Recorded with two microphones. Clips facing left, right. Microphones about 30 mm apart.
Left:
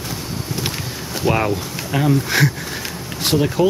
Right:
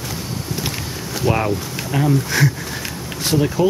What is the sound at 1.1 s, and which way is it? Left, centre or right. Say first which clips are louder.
Speech: left 1 dB; centre.